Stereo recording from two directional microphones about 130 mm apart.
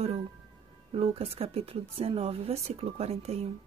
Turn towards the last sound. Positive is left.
turn(degrees=-50)  # may be behind; listen again after turning